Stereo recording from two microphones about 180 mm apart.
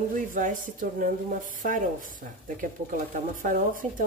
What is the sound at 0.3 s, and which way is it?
Speech, 50° right (ahead or behind).